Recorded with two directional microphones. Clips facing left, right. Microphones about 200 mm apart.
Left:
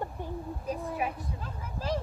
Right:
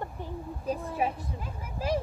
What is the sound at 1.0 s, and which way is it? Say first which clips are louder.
Speech: right 5 dB; 25° right (ahead or behind).